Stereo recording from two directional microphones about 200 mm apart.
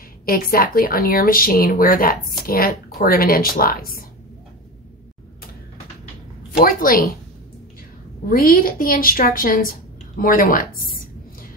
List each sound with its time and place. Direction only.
0.2 s speech: 45° left (ahead or behind)
6.6 s speech: 45° left (ahead or behind)
8.3 s speech: 50° left (ahead or behind)